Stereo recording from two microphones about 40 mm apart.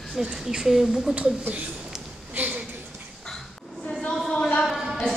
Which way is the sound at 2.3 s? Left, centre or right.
Right.